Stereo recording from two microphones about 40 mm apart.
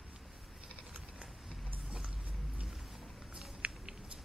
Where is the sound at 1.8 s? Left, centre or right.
Centre.